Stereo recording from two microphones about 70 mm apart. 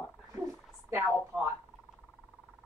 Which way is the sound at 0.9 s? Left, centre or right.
Right.